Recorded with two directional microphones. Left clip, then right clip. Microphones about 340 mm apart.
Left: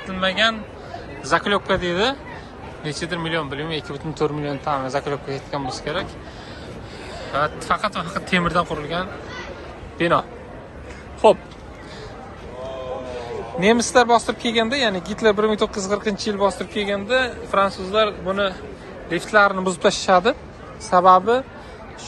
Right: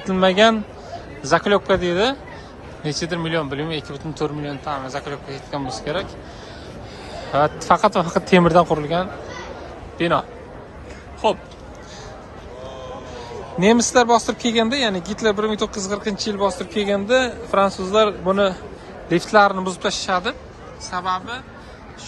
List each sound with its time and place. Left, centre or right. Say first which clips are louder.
1.2 s speech: right 2 dB; centre
7.2 s a man's voice: right 4 dB; centre
11.2 s speech: left 5 dB; centre
13.6 s a man's voice: right 1 dB; centre